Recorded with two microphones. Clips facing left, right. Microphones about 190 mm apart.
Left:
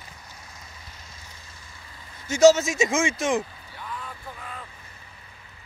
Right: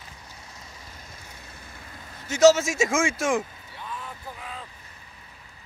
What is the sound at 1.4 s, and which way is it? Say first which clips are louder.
Vehicle: right 4 dB; 60° right (ahead or behind).